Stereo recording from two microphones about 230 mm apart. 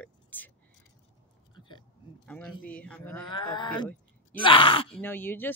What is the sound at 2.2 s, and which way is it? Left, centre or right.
Speech, centre.